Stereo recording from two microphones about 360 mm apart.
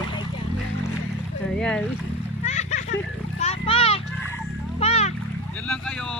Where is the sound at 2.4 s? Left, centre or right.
Centre.